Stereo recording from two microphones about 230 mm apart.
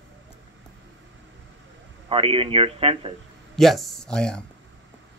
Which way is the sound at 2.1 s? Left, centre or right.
Right.